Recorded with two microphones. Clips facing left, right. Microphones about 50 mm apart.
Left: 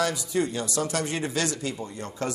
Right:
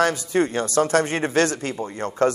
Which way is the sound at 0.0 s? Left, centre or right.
Right.